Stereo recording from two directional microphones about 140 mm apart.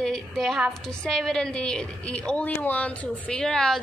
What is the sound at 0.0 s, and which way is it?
A woman's voice, 5° left (ahead or behind).